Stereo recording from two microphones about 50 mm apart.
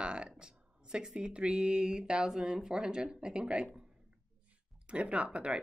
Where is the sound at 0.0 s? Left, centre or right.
Right.